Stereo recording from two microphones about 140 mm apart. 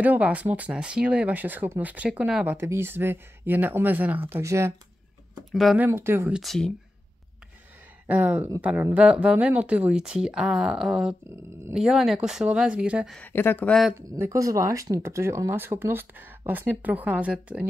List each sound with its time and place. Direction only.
0.0 s speech: 10° right (ahead or behind)
5.5 s speech: centre (ahead or behind)
5.8 s speech: 15° right (ahead or behind)
6.3 s speech: centre (ahead or behind)
8.1 s speech: 10° right (ahead or behind)
13.2 s speech: 15° left (ahead or behind)
13.9 s speech: 20° right (ahead or behind)